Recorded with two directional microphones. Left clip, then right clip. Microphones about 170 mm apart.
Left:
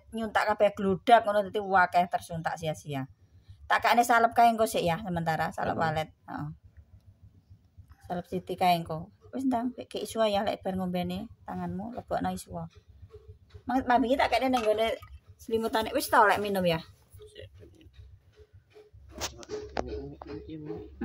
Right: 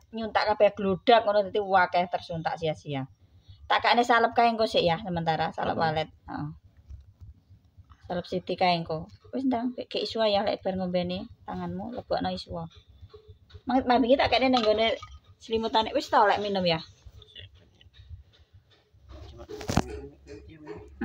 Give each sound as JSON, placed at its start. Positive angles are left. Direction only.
{"t": 0.1, "sound": "a woman's voice", "side_deg": -15}
{"t": 8.1, "sound": "a woman's voice", "side_deg": -10}
{"t": 13.7, "sound": "speech", "side_deg": -20}
{"t": 15.4, "sound": "a woman's voice", "side_deg": 0}